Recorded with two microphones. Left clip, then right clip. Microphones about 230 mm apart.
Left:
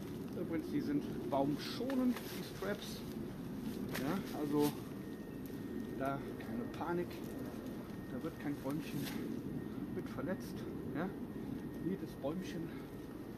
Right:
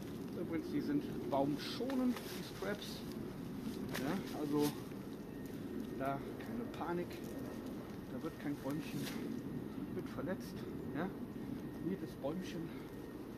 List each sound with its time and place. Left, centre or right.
0.5 s speech: centre
3.9 s speech: centre
6.8 s speech: centre
8.2 s speech: centre